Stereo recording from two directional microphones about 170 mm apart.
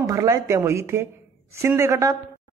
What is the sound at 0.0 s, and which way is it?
Speech, 20° right (ahead or behind).